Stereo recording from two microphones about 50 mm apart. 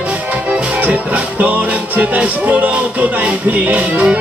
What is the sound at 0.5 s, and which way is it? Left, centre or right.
Music, right.